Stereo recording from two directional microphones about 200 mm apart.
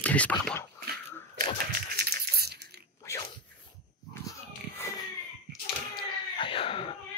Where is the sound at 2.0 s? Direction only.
50° right (ahead or behind).